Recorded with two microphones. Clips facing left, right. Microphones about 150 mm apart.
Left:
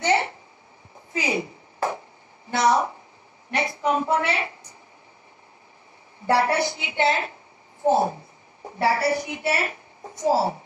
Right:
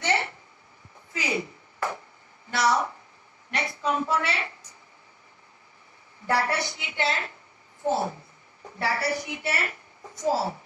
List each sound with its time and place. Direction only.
0.0 s a sound: 20° left (ahead or behind)
2.5 s a woman's voice: 20° left (ahead or behind)
6.2 s a woman's voice: 20° left (ahead or behind)